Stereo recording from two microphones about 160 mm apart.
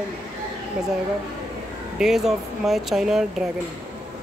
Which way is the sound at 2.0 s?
5° right (ahead or behind).